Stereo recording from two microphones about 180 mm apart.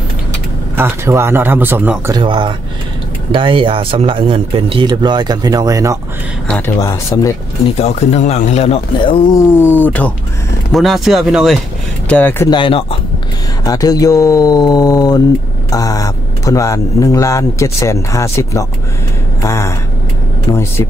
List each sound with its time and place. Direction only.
0.7 s speech: 15° right (ahead or behind)
2.1 s speech: 25° right (ahead or behind)
6.5 s speech: 15° left (ahead or behind)
7.8 s speech: 35° left (ahead or behind)
9.4 s speech: 15° left (ahead or behind)
12.1 s speech: 10° left (ahead or behind)
12.4 s speech: 30° left (ahead or behind)